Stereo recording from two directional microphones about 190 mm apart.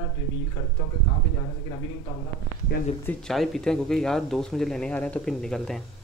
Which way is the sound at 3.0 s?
Centre (ahead or behind).